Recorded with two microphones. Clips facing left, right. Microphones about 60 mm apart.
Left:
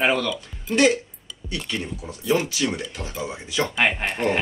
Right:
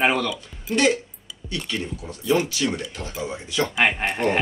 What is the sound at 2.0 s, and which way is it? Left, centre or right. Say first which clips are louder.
A man's voice: right 1 dB; centre.